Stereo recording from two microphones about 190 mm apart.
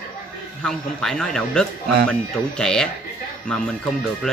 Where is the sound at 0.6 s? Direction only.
5° left (ahead or behind).